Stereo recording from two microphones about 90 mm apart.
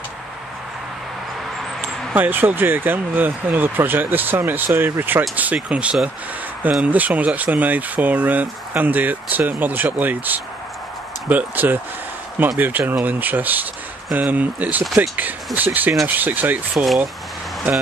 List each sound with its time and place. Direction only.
1.8 s speech: 20° right (ahead or behind)
16.7 s speech: centre (ahead or behind)